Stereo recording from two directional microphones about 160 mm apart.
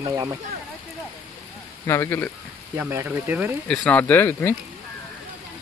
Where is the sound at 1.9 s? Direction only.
15° left (ahead or behind).